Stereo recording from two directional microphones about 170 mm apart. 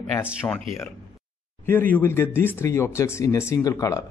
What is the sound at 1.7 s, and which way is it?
Speech, 10° left (ahead or behind).